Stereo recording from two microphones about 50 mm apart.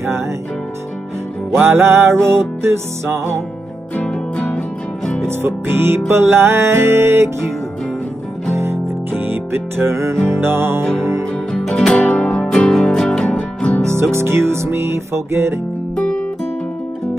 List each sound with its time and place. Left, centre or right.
1.5 s music: right
3.9 s music: left
5.3 s music: right
8.5 s music: right
12.0 s music: centre
13.8 s music: right